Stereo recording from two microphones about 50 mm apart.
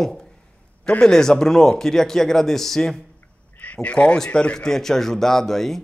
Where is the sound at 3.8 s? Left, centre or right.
Left; by 5.8 s centre.